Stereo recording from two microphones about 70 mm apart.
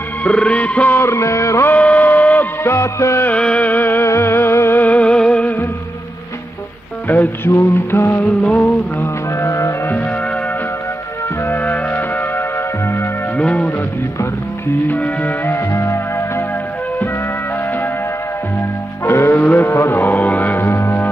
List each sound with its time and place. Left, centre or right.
0.2 s music: centre
0.9 s music: left
1.7 s music: left
2.7 s music: left
3.3 s music: centre
4.0 s music: left
4.7 s music: left
7.1 s music: left
8.2 s music: centre
9.0 s music: left
11.4 s music: left
14.9 s music: left
15.5 s music: left
19.0 s music: left